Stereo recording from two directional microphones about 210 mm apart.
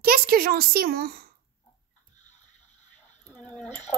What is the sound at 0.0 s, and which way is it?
Speech, 45° right (ahead or behind).